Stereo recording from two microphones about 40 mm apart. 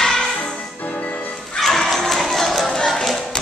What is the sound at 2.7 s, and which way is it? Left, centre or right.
Music, centre.